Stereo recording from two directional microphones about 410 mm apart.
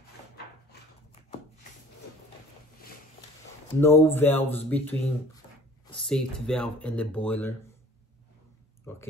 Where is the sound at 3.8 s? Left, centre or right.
Centre.